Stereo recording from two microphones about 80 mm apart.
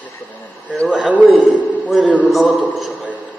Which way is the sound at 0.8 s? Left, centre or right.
Centre.